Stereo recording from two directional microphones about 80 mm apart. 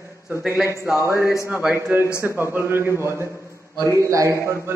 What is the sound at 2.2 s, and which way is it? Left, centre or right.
A man's voice, right.